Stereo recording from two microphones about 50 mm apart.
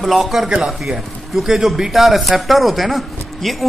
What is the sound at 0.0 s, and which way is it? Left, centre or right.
Speech, centre.